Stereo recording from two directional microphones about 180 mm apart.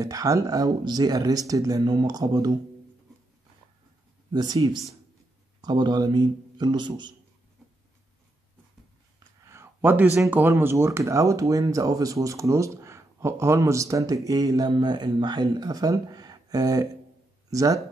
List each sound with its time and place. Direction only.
0.0 s speech: 20° right (ahead or behind)
4.3 s speech: 20° right (ahead or behind)
9.4 s speech: 15° right (ahead or behind)